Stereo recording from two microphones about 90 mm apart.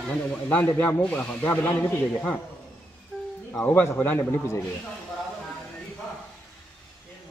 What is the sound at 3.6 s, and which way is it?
Speech, 25° left (ahead or behind).